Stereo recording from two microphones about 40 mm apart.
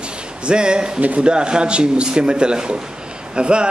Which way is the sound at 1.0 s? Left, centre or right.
Right.